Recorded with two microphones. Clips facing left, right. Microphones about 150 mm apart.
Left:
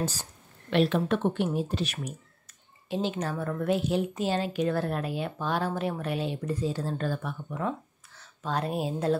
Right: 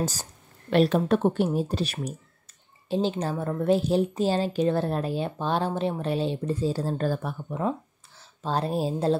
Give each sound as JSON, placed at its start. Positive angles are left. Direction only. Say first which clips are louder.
{"t": 0.0, "sound": "a woman's voice", "louder": "right 2 dB", "side_deg": -40}